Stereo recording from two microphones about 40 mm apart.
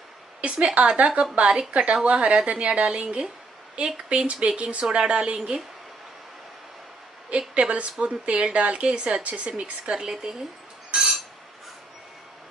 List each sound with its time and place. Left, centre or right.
0.4 s a woman's voice: right
7.2 s a woman's voice: right
9.5 s speech: right
11.0 s a sound: centre